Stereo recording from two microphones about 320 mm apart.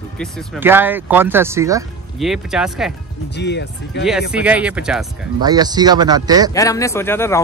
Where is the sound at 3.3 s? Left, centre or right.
Left.